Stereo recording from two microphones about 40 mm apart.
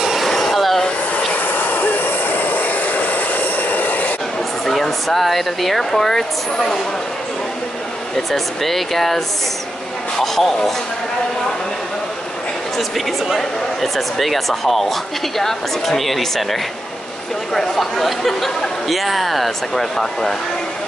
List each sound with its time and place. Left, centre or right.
0.0 s vacuum cleaner: centre
0.3 s vacuum cleaner: centre
1.4 s vehicle: left
4.6 s speech: centre
8.3 s speech: centre
12.7 s speech: centre
17.6 s speech: centre